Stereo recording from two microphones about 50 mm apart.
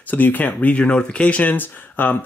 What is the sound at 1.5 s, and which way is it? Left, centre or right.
Speech, left.